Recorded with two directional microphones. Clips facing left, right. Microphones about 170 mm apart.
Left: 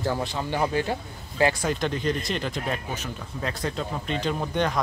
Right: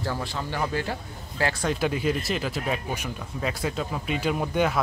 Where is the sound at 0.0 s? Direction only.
20° left (ahead or behind).